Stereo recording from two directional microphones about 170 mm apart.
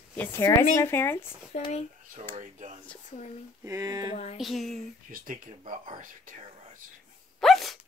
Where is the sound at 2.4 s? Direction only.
50° right (ahead or behind).